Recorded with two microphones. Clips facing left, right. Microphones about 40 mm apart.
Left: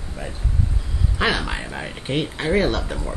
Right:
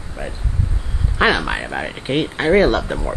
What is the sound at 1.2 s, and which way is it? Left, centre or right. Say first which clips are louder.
Speech: right 6 dB; right.